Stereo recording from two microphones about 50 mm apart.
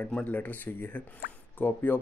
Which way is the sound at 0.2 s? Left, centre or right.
Left.